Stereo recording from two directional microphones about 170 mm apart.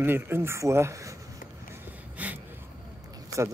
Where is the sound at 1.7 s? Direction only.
10° right (ahead or behind).